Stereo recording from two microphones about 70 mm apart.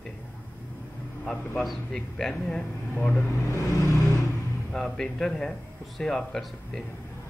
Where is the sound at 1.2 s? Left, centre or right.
Centre.